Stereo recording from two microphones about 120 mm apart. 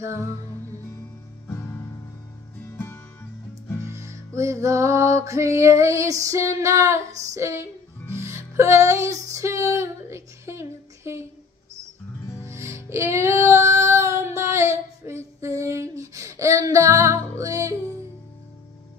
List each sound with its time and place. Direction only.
0.0 s music: 25° right (ahead or behind)
1.5 s music: 20° left (ahead or behind)
3.9 s music: 25° right (ahead or behind)
12.4 s music: 20° right (ahead or behind)